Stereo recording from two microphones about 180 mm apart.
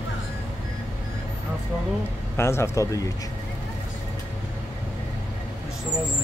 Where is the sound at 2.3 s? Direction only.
15° left (ahead or behind).